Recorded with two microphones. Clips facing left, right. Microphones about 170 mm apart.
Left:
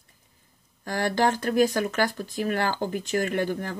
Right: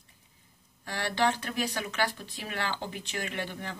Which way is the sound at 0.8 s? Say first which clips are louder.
Left 5 dB; 45° left (ahead or behind).